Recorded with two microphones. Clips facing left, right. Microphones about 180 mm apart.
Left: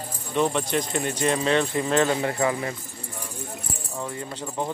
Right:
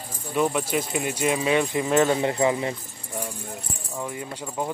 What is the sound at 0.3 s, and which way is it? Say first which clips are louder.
Speech: even; 5° right (ahead or behind).